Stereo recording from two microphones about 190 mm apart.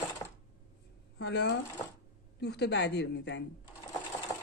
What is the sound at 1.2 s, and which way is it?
Speech, 65° left (ahead or behind).